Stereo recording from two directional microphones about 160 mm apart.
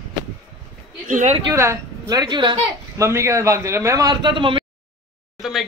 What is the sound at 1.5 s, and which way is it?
A man's voice, 15° right (ahead or behind).